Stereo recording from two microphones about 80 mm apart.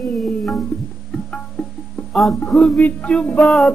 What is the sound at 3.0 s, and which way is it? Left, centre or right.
Music, centre.